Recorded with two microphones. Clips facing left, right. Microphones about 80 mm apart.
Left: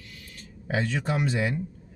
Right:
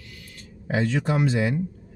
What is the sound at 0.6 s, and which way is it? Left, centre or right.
Speech, centre.